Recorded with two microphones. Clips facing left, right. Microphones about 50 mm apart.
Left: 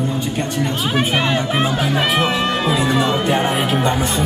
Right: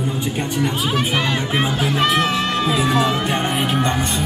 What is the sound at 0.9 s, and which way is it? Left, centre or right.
Music, centre.